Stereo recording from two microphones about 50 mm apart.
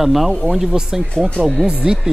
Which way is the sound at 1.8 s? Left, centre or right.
Centre.